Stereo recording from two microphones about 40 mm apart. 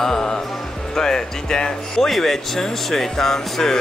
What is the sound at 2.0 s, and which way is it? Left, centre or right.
Speech, centre.